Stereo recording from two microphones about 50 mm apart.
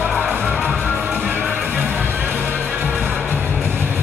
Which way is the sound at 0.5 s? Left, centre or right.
Right.